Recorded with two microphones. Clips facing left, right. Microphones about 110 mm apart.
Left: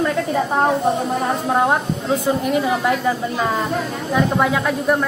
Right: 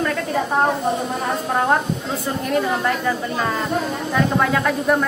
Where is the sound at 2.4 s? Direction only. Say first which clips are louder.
Left 2 dB; 15° left (ahead or behind).